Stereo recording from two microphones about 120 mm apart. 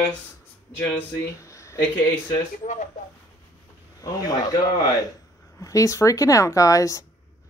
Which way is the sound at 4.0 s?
30° left (ahead or behind).